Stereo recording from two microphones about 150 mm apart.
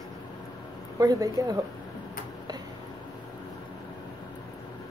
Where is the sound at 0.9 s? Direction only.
25° right (ahead or behind).